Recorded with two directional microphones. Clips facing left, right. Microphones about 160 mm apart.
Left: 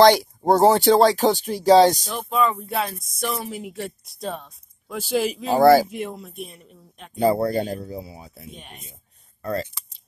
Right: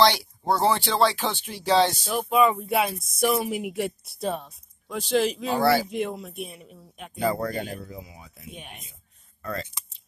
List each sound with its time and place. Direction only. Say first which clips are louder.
0.0 s speech: left 7 dB; 45° left (ahead or behind)
2.0 s speech: right 2 dB; 10° right (ahead or behind)
5.6 s speech: left 8 dB; 45° left (ahead or behind)
5.9 s speech: right 2 dB; 5° left (ahead or behind)
7.2 s speech: left 6 dB; 35° left (ahead or behind)
8.5 s speech: right 1 dB; 5° right (ahead or behind)
9.4 s speech: left 6 dB; 35° left (ahead or behind)